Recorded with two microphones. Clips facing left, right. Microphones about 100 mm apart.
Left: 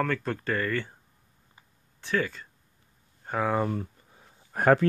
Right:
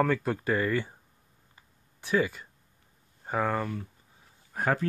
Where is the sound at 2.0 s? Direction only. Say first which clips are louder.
Right 2 dB; 15° right (ahead or behind).